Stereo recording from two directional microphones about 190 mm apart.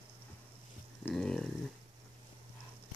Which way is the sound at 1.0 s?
5° left (ahead or behind).